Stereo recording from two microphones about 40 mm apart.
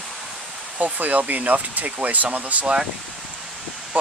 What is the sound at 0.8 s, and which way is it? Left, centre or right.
Speech, right.